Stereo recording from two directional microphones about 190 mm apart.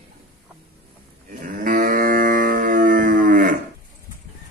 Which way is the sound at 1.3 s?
45° right (ahead or behind).